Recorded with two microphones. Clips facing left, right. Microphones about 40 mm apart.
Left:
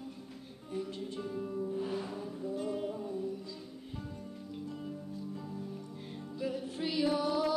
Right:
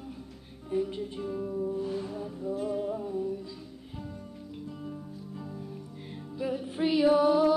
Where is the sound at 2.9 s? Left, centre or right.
Centre.